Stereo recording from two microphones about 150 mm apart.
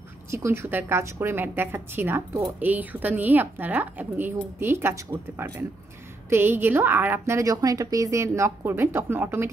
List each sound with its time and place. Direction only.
0.3 s a woman's voice: 15° right (ahead or behind)